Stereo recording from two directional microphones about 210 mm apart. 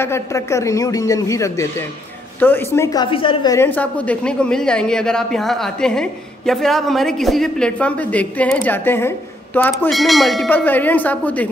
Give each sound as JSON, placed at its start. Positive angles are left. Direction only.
{"t": 0.0, "sound": "speech", "side_deg": 15}
{"t": 3.5, "sound": "a woman's voice", "side_deg": 10}